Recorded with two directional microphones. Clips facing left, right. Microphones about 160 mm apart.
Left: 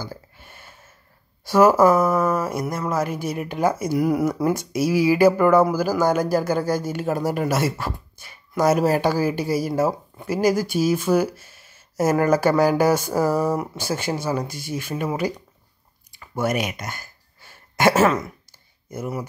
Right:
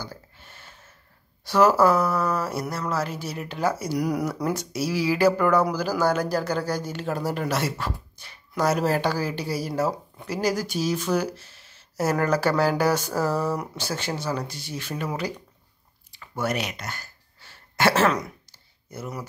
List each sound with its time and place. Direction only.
0.0 s a sound: 10° left (ahead or behind)
1.4 s speech: 10° left (ahead or behind)
3.1 s speech: 50° left (ahead or behind)
3.3 s speech: 15° left (ahead or behind)
16.2 s a sound: 10° left (ahead or behind)
18.9 s speech: 10° left (ahead or behind)